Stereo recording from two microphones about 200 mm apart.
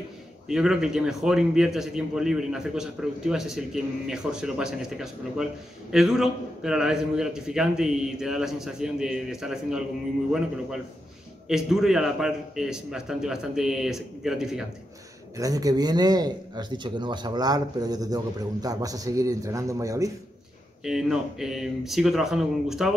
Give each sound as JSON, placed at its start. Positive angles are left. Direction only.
{"t": 0.5, "sound": "a man's voice", "side_deg": -5}
{"t": 11.4, "sound": "a man's voice", "side_deg": 0}
{"t": 15.3, "sound": "speech", "side_deg": -15}
{"t": 20.8, "sound": "a man's voice", "side_deg": 0}